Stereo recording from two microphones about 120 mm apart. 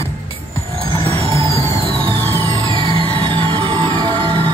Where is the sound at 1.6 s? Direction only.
55° right (ahead or behind).